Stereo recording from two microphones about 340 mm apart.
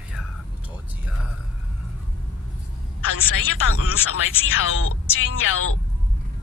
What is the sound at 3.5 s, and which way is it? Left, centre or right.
A woman's voice, left.